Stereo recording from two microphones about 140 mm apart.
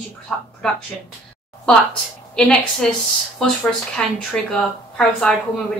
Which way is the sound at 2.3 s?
5° left (ahead or behind).